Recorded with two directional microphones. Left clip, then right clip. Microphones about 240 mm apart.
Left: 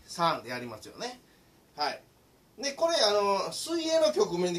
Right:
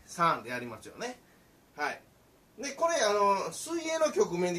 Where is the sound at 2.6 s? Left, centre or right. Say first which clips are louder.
Left 2 dB; centre.